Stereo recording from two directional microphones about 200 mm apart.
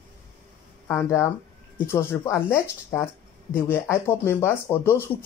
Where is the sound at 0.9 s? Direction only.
15° left (ahead or behind).